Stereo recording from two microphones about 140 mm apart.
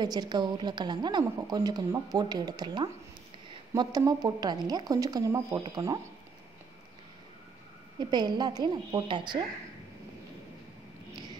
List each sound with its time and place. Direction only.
0.0 s a woman's voice: 30° right (ahead or behind)
8.0 s a woman's voice: 30° right (ahead or behind)